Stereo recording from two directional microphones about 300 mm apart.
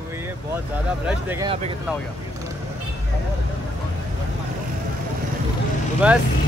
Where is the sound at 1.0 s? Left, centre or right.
Centre.